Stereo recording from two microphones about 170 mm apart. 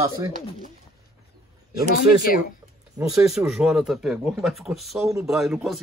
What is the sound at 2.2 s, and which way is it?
Speech, 60° left (ahead or behind).